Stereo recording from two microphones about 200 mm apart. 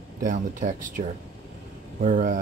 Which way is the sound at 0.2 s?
40° right (ahead or behind).